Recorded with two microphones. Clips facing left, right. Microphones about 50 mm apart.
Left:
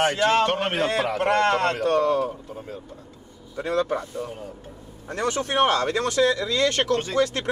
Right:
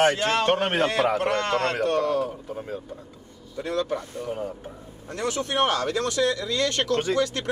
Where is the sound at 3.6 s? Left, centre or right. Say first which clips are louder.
Left 3 dB; left.